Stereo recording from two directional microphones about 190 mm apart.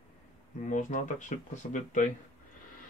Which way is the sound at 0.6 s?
40° left (ahead or behind).